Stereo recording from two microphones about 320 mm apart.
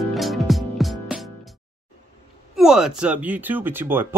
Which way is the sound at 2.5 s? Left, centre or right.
Centre.